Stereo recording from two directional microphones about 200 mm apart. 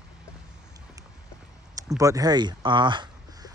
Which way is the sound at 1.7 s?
15° right (ahead or behind).